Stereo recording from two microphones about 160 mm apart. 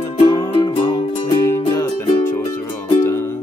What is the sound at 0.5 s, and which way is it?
Music, 30° left (ahead or behind).